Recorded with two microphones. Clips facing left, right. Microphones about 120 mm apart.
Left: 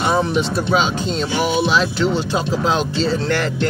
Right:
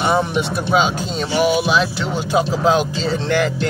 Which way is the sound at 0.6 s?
15° right (ahead or behind).